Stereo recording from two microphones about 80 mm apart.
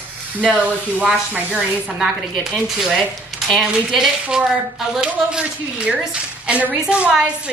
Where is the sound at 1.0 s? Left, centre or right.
Centre.